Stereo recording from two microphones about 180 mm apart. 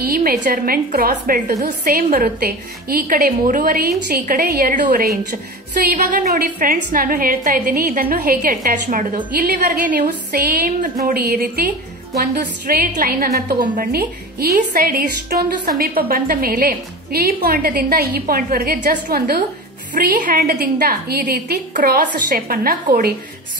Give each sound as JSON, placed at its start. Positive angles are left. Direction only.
{"t": 0.0, "sound": "a woman's voice", "side_deg": -55}
{"t": 2.0, "sound": "a woman's voice", "side_deg": -55}
{"t": 19.9, "sound": "a woman's voice", "side_deg": -45}